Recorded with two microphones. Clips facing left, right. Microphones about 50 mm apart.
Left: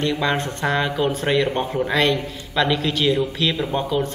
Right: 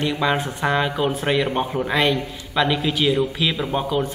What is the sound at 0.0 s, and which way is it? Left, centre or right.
Speech, centre.